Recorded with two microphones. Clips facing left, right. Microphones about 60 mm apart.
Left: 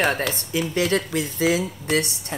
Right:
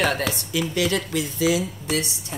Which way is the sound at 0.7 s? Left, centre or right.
Left.